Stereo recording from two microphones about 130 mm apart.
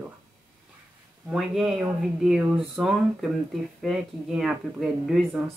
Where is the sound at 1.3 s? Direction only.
Centre (ahead or behind).